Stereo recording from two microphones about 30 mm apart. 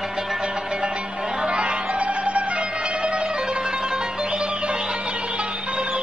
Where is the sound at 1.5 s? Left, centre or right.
Right.